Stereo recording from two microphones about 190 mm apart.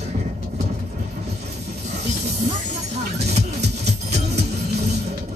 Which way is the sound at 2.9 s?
35° right (ahead or behind).